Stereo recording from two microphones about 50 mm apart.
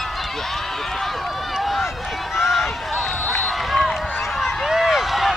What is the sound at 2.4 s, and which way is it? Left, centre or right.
Run, centre.